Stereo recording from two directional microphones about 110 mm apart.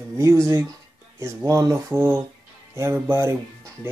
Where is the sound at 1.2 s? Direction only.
25° right (ahead or behind).